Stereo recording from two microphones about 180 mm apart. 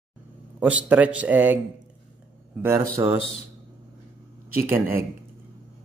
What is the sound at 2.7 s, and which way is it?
Speech, 15° right (ahead or behind).